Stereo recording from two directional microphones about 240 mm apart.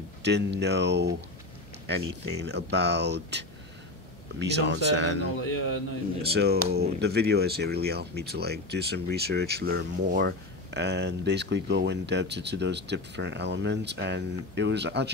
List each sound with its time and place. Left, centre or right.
0.2 s speech: right